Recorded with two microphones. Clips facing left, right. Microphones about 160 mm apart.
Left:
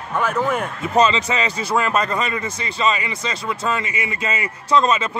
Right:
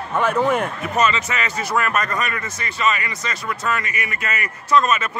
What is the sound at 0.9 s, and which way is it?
Speech, 30° left (ahead or behind).